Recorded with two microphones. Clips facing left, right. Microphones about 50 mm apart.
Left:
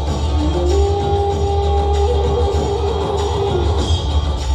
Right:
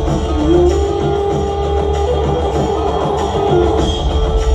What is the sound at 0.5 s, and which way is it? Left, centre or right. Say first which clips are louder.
Music: right 5 dB; right.